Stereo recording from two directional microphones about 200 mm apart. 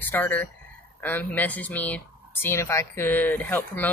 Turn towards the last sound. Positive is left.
turn(degrees=10)  # may be behind; listen again after turning